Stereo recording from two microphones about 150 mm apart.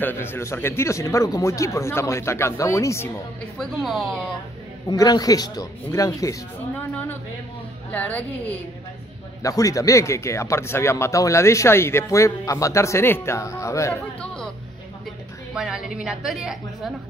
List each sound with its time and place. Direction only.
0.0 s speech: 15° left (ahead or behind)
3.5 s a woman's voice: centre (ahead or behind)
4.8 s speech: 25° left (ahead or behind)
6.7 s a woman's voice: 10° left (ahead or behind)
9.4 s speech: 20° left (ahead or behind)
14.2 s music: 5° left (ahead or behind)
15.5 s a woman's voice: 5° right (ahead or behind)